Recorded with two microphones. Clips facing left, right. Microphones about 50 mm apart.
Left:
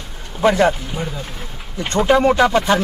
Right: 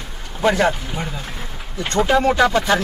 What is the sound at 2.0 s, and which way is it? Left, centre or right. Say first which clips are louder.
Speech: left 3 dB; centre.